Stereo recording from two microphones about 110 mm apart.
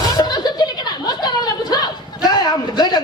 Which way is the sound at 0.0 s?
35° left (ahead or behind).